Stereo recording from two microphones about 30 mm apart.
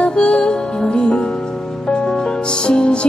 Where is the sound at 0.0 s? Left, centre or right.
Left.